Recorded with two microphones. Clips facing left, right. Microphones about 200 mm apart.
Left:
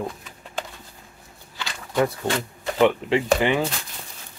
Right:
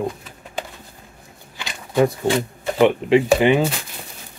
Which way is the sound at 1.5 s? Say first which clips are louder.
Right 4 dB; 20° right (ahead or behind).